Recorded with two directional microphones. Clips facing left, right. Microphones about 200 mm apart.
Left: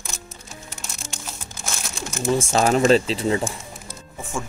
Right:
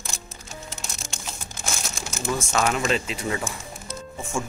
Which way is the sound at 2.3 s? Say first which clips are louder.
Left 5 dB; 30° left (ahead or behind).